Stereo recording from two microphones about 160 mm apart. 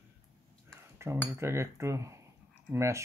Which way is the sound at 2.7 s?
15° right (ahead or behind).